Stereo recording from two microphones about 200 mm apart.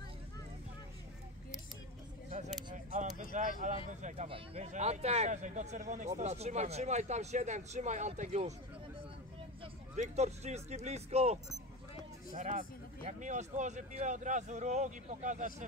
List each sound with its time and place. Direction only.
2.7 s a sound: 40° right (ahead or behind)
3.6 s speech: 35° right (ahead or behind)
9.9 s speech: 35° right (ahead or behind)